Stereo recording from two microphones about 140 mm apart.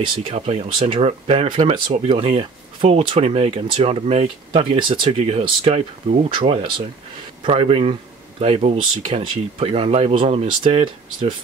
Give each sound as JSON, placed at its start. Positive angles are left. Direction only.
{"t": 0.0, "sound": "speech", "side_deg": -40}